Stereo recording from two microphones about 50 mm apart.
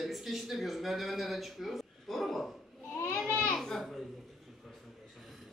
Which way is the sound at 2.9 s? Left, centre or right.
Left.